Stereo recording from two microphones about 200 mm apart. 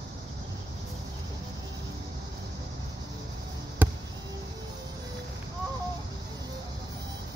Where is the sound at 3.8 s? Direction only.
10° right (ahead or behind).